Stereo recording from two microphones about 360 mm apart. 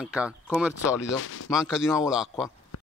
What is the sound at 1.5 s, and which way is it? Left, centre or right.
Speech, centre.